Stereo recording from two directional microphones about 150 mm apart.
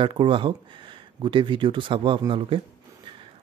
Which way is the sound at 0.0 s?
35° right (ahead or behind).